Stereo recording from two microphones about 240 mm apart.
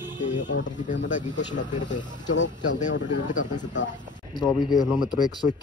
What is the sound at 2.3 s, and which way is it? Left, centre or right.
Speech, left.